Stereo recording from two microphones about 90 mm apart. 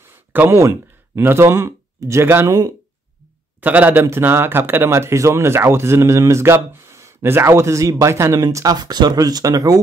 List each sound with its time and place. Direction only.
0.3 s speech: 25° right (ahead or behind)
2.4 s speech: 45° right (ahead or behind)
3.6 s speech: 20° right (ahead or behind); by 8.7 s 40° right (ahead or behind)
8.7 s speech: 50° right (ahead or behind)